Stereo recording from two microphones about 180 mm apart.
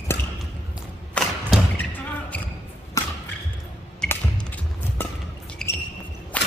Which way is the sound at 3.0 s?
15° left (ahead or behind).